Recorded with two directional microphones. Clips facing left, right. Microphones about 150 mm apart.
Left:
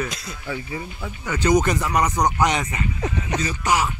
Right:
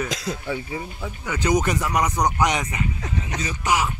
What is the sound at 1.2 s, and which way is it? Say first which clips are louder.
Speech: left 3 dB; 10° right (ahead or behind).